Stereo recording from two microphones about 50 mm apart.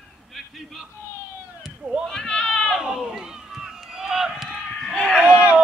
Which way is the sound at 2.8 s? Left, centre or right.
Centre.